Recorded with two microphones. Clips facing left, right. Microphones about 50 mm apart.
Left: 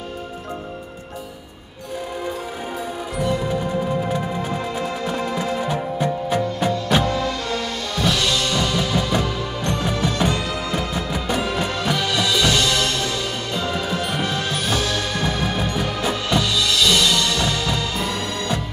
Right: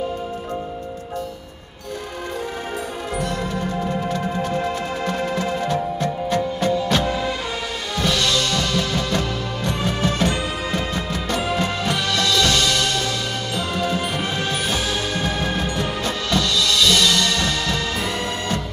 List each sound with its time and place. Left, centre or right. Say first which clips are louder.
4.1 s music: right 1 dB; centre
7.1 s music: even; centre
8.0 s music: even; centre
14.3 s music: even; centre
15.3 s music: even; centre